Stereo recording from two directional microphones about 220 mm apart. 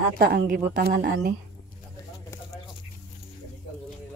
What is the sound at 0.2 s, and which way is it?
Speech, 45° right (ahead or behind).